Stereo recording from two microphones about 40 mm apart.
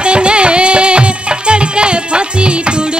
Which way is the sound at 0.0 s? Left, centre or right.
Right.